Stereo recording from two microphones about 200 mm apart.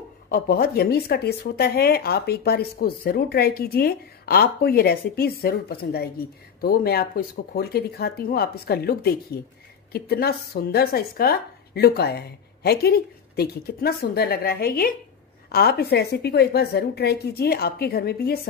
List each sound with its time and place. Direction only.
0.3 s speech: 50° left (ahead or behind)